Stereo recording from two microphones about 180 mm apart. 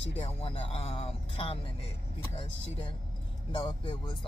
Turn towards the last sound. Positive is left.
turn(degrees=25)  # may be behind; listen again after turning